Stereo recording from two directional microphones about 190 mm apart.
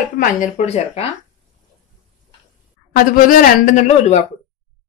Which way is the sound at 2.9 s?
45° left (ahead or behind).